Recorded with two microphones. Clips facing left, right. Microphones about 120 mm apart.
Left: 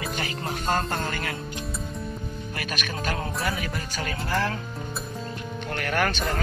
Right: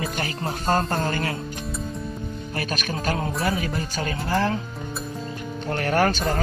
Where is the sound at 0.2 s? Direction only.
30° right (ahead or behind).